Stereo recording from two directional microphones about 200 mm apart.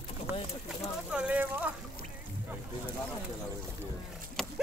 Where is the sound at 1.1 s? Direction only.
5° right (ahead or behind).